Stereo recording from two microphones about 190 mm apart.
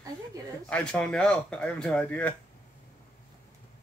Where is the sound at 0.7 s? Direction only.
5° left (ahead or behind).